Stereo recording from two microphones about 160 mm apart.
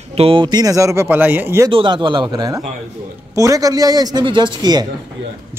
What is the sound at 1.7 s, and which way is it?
Speech, 30° right (ahead or behind).